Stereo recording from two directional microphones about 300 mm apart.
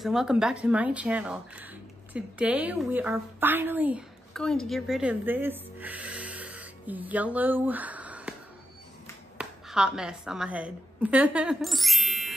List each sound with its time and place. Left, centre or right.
0.0 s a woman's voice: centre
9.4 s a woman's voice: centre